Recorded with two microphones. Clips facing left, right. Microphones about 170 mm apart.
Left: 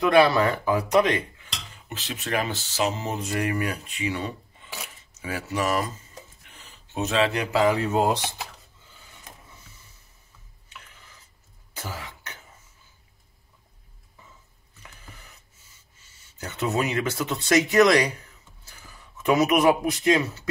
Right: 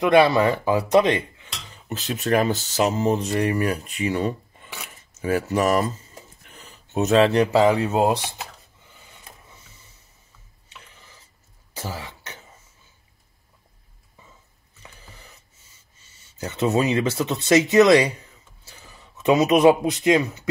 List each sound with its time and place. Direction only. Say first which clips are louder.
0.0 s speech: right 2 dB; 20° right (ahead or behind)
1.9 s speech: right 7 dB; 45° right (ahead or behind); by 8.0 s 30° right (ahead or behind)
11.8 s throat clearing: right 4 dB; 30° right (ahead or behind)
16.3 s speech: right 5 dB; 25° right (ahead or behind)
19.2 s speech: right 4 dB; 25° right (ahead or behind)